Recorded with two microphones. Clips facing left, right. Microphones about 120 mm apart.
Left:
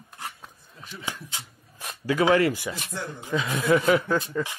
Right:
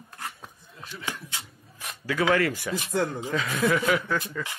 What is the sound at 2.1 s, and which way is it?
Speech, 25° left (ahead or behind).